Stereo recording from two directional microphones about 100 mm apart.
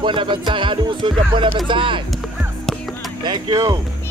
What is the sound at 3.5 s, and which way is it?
Speech, 35° right (ahead or behind).